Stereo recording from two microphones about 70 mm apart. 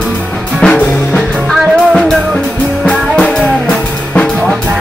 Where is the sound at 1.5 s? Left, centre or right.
Centre.